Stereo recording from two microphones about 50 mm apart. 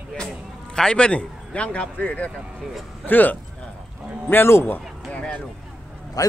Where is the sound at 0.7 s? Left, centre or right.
Centre; by 3.3 s left.